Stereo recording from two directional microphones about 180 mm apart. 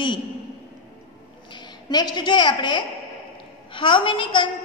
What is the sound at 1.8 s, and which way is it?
A woman's voice, 25° left (ahead or behind).